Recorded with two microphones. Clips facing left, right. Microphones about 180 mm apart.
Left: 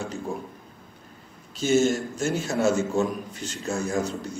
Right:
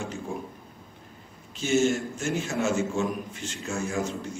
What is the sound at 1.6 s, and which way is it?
A man's voice, 40° left (ahead or behind).